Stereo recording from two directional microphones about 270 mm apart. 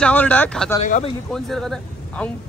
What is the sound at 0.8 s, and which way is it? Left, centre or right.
Speech, left.